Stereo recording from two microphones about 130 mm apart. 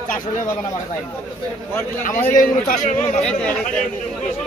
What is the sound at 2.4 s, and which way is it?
Speech, 90° left.